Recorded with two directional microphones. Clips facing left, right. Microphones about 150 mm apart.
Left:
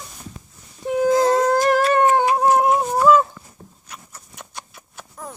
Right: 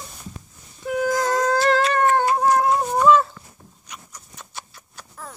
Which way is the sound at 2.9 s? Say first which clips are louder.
Even; 5° left (ahead or behind).